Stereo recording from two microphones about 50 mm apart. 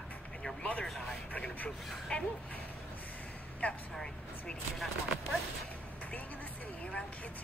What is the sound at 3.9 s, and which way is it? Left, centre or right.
Speech, centre.